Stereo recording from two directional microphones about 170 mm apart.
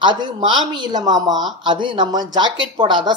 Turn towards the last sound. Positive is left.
turn(degrees=-25)  # may be behind; listen again after turning